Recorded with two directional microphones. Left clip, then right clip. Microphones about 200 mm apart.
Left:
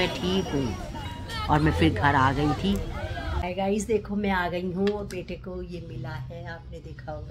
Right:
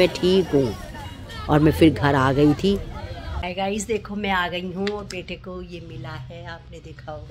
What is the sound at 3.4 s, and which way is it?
A woman's voice, 5° right (ahead or behind).